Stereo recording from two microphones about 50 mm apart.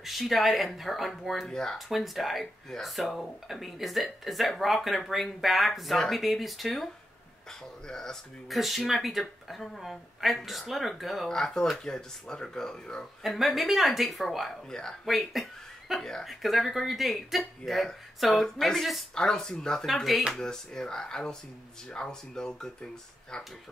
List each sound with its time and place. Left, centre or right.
0.0 s a woman's voice: centre
1.5 s speech: centre
1.9 s a woman's voice: centre
7.9 s speech: centre
8.5 s a woman's voice: centre
11.2 s speech: centre
13.2 s a woman's voice: centre
14.7 s speech: centre
15.0 s a woman's voice: centre
15.9 s speech: centre
16.3 s a woman's voice: centre
19.1 s speech: centre
19.9 s a woman's voice: centre
20.3 s speech: centre